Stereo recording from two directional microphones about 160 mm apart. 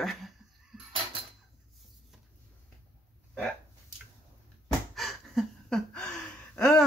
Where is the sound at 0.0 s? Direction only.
Centre (ahead or behind).